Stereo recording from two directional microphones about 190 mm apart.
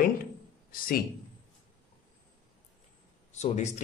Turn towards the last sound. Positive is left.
turn(degrees=35)  # may be behind; listen again after turning